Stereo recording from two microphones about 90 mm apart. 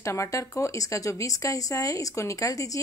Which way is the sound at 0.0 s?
35° left (ahead or behind).